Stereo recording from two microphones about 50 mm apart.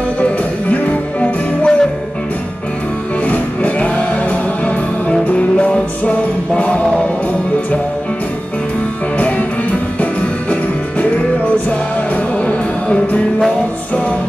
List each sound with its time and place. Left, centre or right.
0.2 s music: left
3.3 s music: left
5.3 s music: left
12.4 s music: left